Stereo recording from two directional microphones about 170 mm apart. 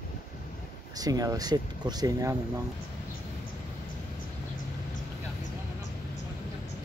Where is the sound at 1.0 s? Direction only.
20° right (ahead or behind).